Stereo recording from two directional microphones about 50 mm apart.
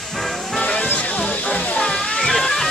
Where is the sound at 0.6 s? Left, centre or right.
Left.